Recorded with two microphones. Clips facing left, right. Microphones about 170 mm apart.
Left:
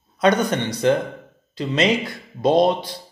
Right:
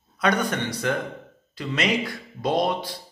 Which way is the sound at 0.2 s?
20° left (ahead or behind).